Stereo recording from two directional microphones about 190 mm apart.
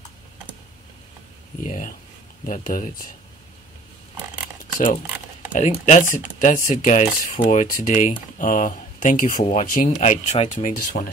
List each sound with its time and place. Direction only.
1.6 s speech: 40° left (ahead or behind)
4.7 s speech: 45° left (ahead or behind)